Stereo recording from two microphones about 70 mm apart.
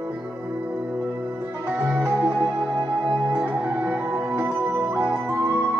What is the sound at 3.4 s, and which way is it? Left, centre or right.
Music, right.